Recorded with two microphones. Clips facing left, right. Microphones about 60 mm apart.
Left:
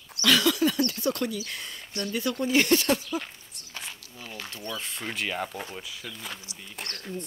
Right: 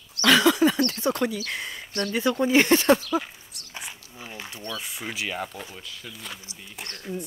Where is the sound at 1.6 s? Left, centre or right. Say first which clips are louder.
Right 5 dB; centre.